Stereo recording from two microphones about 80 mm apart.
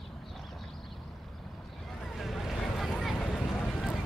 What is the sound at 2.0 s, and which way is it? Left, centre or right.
Boat, centre.